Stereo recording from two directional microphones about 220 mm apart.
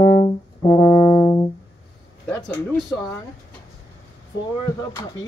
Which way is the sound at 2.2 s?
5° left (ahead or behind).